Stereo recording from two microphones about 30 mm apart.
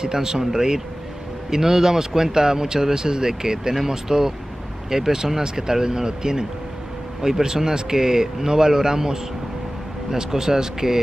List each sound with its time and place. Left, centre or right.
0.0 s speech: centre